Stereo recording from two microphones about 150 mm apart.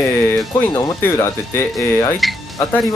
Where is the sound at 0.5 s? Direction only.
20° left (ahead or behind).